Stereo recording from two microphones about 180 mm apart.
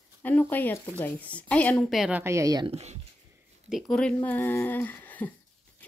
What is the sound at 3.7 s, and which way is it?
Speech, centre (ahead or behind).